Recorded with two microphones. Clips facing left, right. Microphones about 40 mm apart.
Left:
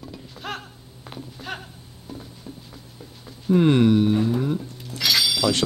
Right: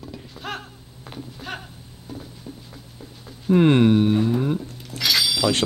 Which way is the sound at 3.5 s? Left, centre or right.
Right.